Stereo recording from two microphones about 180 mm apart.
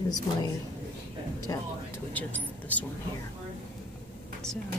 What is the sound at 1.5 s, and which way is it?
Speech, 20° left (ahead or behind).